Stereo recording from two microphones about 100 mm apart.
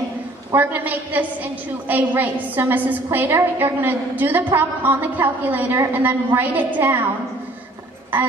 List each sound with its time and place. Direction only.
0.6 s a woman's voice: 20° right (ahead or behind)